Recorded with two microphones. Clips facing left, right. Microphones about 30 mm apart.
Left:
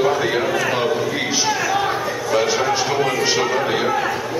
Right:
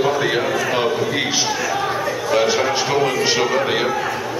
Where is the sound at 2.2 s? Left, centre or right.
Centre.